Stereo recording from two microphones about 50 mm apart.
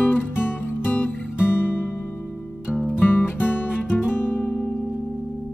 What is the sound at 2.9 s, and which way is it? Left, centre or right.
Music, left.